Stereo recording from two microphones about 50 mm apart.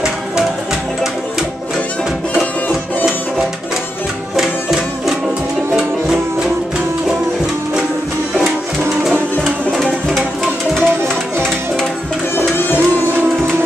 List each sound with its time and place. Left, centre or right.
4.4 s music: centre
5.8 s music: centre
9.4 s music: centre
12.5 s music: left